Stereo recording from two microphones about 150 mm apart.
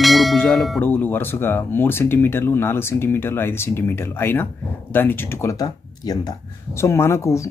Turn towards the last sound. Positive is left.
turn(degrees=20)  # may be behind; listen again after turning